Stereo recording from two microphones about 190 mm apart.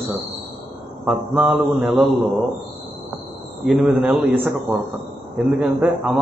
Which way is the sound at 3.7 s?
5° right (ahead or behind).